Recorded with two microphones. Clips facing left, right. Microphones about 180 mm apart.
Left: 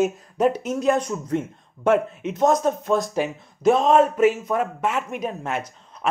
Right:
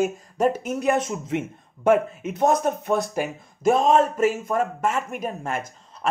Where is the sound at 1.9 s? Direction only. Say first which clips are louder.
Right 1 dB; centre (ahead or behind).